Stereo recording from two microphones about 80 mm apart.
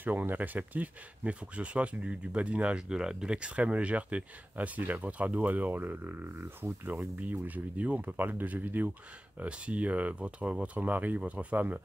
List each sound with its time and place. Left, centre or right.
0.0 s speech: right